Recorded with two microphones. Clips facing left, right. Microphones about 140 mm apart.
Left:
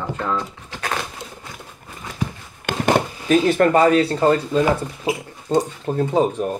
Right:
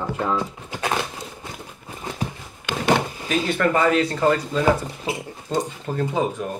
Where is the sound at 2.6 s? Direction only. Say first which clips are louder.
Left 2 dB; 45° left (ahead or behind).